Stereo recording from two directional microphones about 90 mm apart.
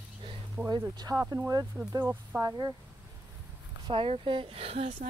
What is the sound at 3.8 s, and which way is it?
Speech, 70° right (ahead or behind).